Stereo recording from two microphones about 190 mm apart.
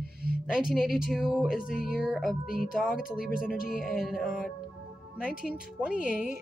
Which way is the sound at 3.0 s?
50° left (ahead or behind).